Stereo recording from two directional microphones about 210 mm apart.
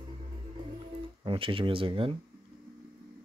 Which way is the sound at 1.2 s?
25° right (ahead or behind).